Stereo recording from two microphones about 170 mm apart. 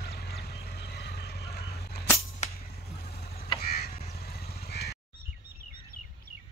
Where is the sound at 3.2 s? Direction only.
65° left (ahead or behind).